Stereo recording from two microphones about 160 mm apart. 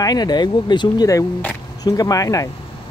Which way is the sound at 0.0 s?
25° left (ahead or behind).